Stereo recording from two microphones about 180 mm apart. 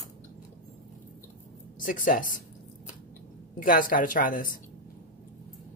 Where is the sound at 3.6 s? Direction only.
50° left (ahead or behind).